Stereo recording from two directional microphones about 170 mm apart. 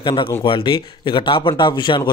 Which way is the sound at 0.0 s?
30° left (ahead or behind).